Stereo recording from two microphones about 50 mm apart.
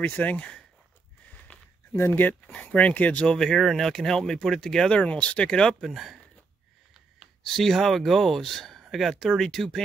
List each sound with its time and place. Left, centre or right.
0.0 s speech: left
2.0 s speech: left
2.6 s speech: left
3.3 s speech: centre
3.5 s speech: centre
4.9 s speech: left
5.9 s speech: centre
7.4 s speech: centre